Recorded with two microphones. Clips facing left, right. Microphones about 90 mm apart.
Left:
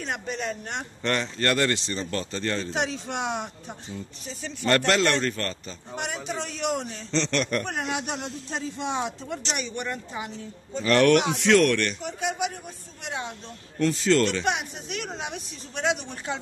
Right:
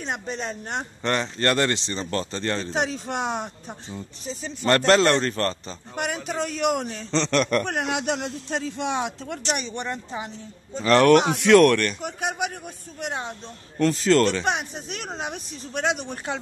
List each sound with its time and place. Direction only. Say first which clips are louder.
0.0 s a man's voice: right 1 dB; 25° right (ahead or behind)
3.9 s speech: right 5 dB; 25° right (ahead or behind)
4.6 s a man's voice: right 4 dB; 40° right (ahead or behind)
6.0 s speech: right 5 dB; 55° right (ahead or behind)
7.5 s a man's voice: right 4 dB; 70° right (ahead or behind)
9.6 s a man's voice: right 1 dB; 30° right (ahead or behind)
11.4 s speech: right 6 dB; 50° right (ahead or behind)
13.0 s speech: right 3 dB; 45° right (ahead or behind)